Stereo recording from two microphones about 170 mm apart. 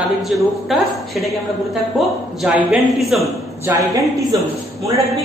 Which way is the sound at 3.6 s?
20° right (ahead or behind).